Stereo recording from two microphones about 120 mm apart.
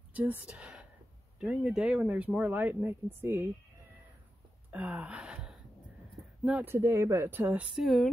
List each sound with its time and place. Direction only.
0.1 s speech: 15° right (ahead or behind)
4.6 s gasp: 10° right (ahead or behind)
6.4 s speech: 15° right (ahead or behind)